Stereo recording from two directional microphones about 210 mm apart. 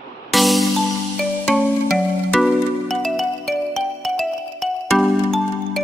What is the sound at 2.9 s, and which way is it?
Music, centre (ahead or behind).